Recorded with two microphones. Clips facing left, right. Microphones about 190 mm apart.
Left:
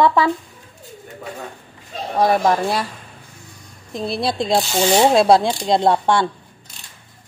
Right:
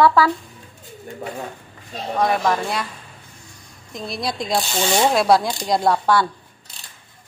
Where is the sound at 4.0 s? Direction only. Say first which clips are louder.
Left 5 dB; 30° left (ahead or behind).